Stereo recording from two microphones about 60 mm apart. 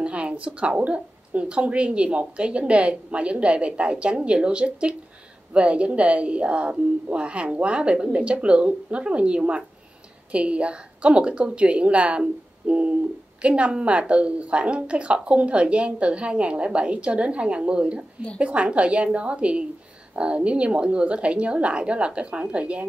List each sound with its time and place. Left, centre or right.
0.0 s speech: right